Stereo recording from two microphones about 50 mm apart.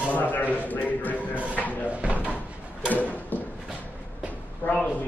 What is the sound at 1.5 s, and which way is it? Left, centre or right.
Drawer open or close, left.